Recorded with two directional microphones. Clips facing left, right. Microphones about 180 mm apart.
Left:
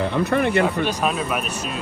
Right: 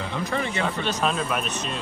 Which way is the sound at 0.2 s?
60° left (ahead or behind).